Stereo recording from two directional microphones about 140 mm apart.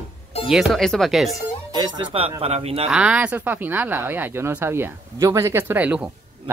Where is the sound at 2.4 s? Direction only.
45° right (ahead or behind).